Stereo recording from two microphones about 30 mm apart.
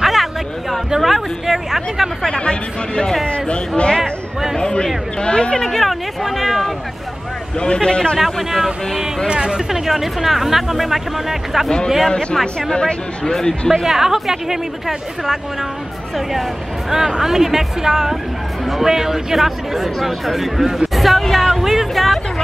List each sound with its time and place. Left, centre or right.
0.0 s a sound: centre
0.8 s speech: centre
2.2 s speech: left
5.6 s speech: centre
7.5 s speech: left
8.2 s speech: centre
9.3 s speech: right
9.7 s speech: centre
12.1 s speech: left
13.3 s speech: centre
13.8 s speech: centre
16.9 s speech: centre
21.5 s speech: centre
21.9 s speech: centre